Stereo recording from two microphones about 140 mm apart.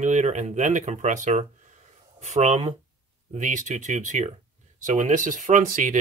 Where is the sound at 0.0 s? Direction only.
55° right (ahead or behind).